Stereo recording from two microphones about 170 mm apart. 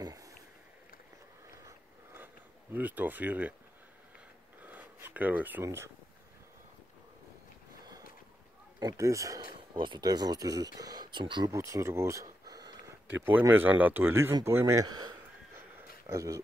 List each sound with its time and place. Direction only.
0.0 s boat: 20° right (ahead or behind)
2.7 s speech: 10° right (ahead or behind)
4.6 s a sound: 10° right (ahead or behind)
8.7 s speech: 20° right (ahead or behind)
13.1 s speech: 10° right (ahead or behind)
16.1 s speech: 20° right (ahead or behind)